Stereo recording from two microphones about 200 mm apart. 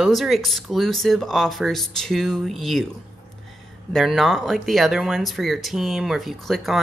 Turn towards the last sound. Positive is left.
turn(degrees=0)  # may be behind; listen again after turning